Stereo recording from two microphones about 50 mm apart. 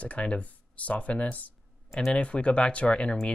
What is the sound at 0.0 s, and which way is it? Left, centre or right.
Speech, left.